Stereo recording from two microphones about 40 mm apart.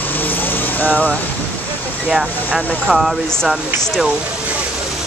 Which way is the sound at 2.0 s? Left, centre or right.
Centre.